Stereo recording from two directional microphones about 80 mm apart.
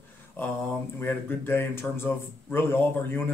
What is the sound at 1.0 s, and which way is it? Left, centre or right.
A man's voice, left.